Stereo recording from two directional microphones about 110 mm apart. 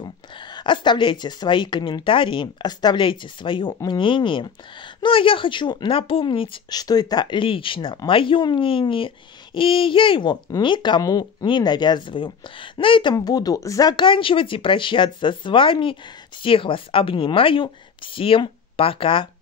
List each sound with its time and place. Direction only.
0.0 s speech: 40° left (ahead or behind)
6.7 s speech: 35° left (ahead or behind)
11.0 s speech: 35° left (ahead or behind)
11.4 s speech: 45° left (ahead or behind)
13.1 s speech: 35° left (ahead or behind); by 19.2 s 50° left (ahead or behind)